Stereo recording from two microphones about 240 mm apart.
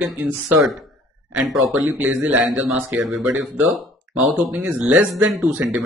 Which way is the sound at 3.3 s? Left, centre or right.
Right.